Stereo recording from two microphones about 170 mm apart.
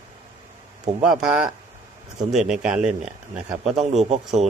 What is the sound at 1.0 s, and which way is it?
Speech, 5° right (ahead or behind).